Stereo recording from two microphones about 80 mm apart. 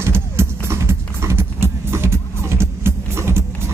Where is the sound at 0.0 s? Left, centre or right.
Right.